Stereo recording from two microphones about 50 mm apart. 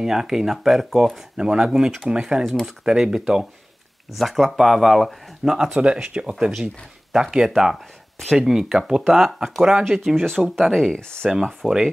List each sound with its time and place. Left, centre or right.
0.0 s speech: centre
4.1 s speech: centre; by 6.3 s right
7.1 s speech: centre
9.8 s speech: centre
11.2 s speech: centre